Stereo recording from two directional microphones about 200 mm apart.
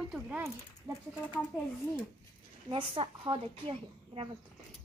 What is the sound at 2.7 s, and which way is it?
A woman's voice, 25° right (ahead or behind).